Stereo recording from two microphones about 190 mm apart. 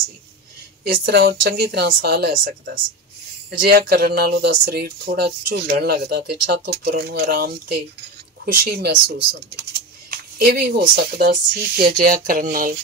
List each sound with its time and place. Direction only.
0.8 s speech: 55° right (ahead or behind)
10.1 s speech: 55° right (ahead or behind)